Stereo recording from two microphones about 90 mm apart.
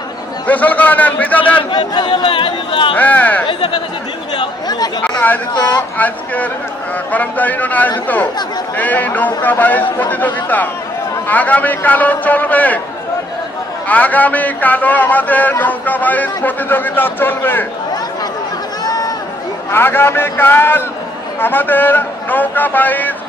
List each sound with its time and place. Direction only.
0.5 s a man's voice: 15° left (ahead or behind)
1.6 s speech: 55° left (ahead or behind); by 3.0 s 75° left (ahead or behind)
3.0 s a man's voice: 15° left (ahead or behind)
3.4 s speech: 60° left (ahead or behind)
4.4 s speech: 45° left (ahead or behind)
5.0 s a man's voice: 15° left (ahead or behind)
13.8 s speech: 15° left (ahead or behind)
19.7 s speech: 25° left (ahead or behind)